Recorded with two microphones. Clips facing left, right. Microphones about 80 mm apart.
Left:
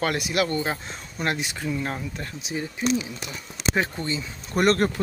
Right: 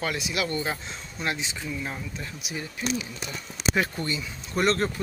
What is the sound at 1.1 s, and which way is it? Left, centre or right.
Speech, left.